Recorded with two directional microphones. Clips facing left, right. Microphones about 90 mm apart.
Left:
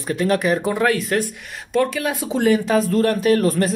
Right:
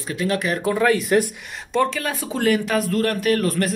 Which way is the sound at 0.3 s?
30° left (ahead or behind).